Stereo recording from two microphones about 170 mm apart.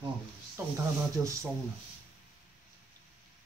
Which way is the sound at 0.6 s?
10° right (ahead or behind).